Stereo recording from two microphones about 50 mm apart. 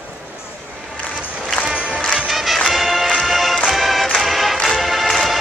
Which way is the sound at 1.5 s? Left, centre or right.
Centre.